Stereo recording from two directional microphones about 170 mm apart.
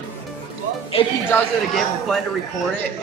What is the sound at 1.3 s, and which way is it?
Speech, 15° left (ahead or behind).